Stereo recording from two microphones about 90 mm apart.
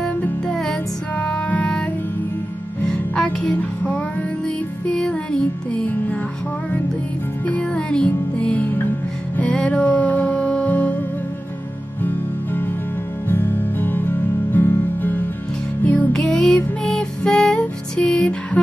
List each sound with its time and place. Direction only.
0.0 s music: 10° left (ahead or behind)
2.9 s music: 10° left (ahead or behind)
7.4 s music: 10° left (ahead or behind)
13.3 s music: 20° left (ahead or behind)